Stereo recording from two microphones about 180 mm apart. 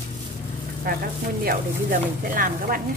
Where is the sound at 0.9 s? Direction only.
55° right (ahead or behind).